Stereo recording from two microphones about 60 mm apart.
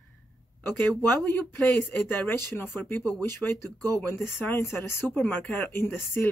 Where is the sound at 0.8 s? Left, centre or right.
Left.